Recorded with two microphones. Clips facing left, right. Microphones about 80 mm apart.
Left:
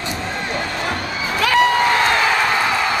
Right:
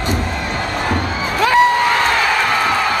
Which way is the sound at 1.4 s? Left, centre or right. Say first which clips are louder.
Right 3 dB; right.